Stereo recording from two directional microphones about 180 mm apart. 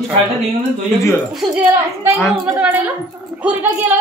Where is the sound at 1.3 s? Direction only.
Centre (ahead or behind).